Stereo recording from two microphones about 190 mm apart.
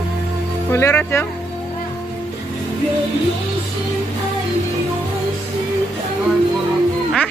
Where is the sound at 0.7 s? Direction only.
15° left (ahead or behind).